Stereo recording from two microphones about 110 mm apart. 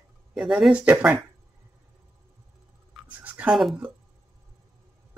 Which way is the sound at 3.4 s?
5° right (ahead or behind).